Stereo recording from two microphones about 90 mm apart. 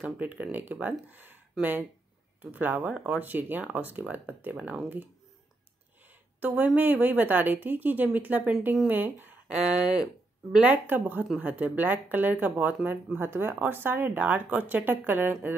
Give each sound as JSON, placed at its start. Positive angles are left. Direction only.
{"t": 0.0, "sound": "speech", "side_deg": -15}
{"t": 6.4, "sound": "speech", "side_deg": -15}
{"t": 10.5, "sound": "speech", "side_deg": -15}